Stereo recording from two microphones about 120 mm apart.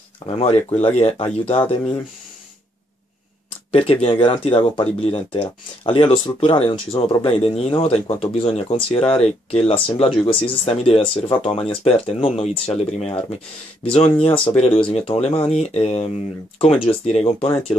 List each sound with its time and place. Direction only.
0.2 s speech: 50° left (ahead or behind)
0.7 s speech: 60° left (ahead or behind)
3.7 s speech: 55° left (ahead or behind)
15.0 s speech: 60° left (ahead or behind)
16.5 s speech: 45° left (ahead or behind)
17.0 s speech: 60° left (ahead or behind)